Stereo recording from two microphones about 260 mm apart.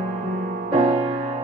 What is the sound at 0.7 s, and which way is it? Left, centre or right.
Music, right.